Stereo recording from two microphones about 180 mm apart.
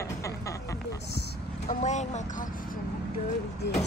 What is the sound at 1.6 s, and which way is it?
Speech, 40° left (ahead or behind).